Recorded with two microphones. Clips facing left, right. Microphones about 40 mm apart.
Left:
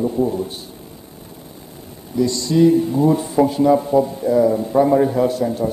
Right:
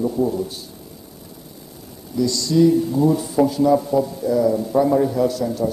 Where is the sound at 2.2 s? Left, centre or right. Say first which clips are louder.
Left 1 dB; left.